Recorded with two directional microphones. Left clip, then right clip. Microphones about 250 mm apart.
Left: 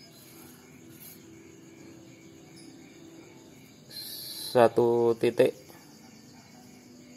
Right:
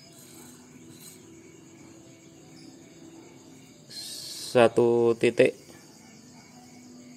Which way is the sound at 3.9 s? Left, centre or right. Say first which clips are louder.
Right 2 dB; centre.